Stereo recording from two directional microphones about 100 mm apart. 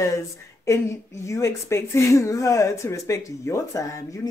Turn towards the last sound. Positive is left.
turn(degrees=35)  # may be behind; listen again after turning